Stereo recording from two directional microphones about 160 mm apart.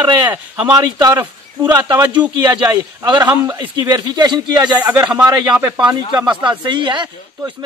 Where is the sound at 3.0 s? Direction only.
25° right (ahead or behind).